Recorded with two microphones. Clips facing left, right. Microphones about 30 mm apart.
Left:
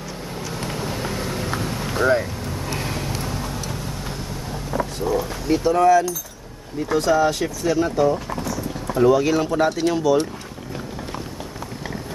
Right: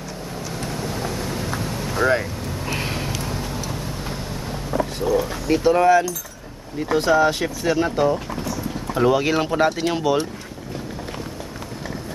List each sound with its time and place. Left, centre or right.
0.7 s vehicle: centre
1.2 s a sound: centre
2.0 s speech: centre
2.8 s a sound: right
3.3 s vehicle: centre
4.7 s boat: centre
5.5 s speech: right
6.9 s speech: right
8.1 s a sound: centre
8.9 s speech: right